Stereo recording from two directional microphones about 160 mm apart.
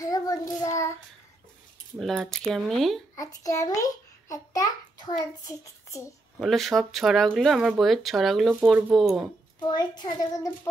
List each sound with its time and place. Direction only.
0.0 s child singing: 20° left (ahead or behind)
2.0 s speech: centre (ahead or behind)
3.2 s a child's voice: 20° left (ahead or behind)
6.4 s speech: centre (ahead or behind)
9.6 s a child's voice: 25° left (ahead or behind)